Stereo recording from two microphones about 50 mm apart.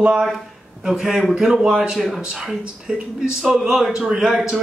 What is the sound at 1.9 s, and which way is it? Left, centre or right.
Speech, centre.